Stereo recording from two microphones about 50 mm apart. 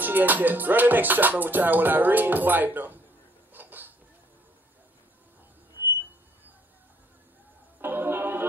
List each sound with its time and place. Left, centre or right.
0.0 s music: right
3.5 s hiccup: right
7.8 s music: right